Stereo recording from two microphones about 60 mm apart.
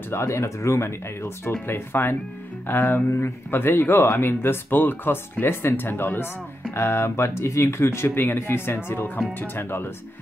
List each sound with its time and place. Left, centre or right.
0.1 s speech: left